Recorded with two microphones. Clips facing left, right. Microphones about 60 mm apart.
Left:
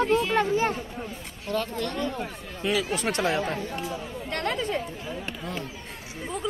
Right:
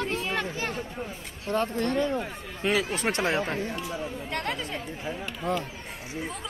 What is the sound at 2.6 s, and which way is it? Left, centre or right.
Speech, right.